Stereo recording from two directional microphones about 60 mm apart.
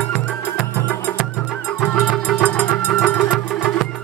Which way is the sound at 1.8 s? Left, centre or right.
Centre.